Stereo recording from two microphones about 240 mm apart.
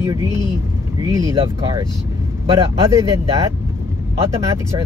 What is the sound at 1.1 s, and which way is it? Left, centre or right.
Speech, centre.